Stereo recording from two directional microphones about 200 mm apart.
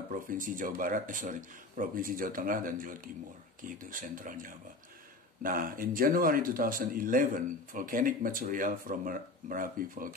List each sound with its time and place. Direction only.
0.1 s speech: 40° right (ahead or behind)